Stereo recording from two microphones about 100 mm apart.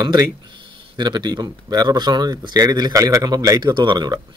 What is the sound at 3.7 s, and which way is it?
Speech, 50° right (ahead or behind).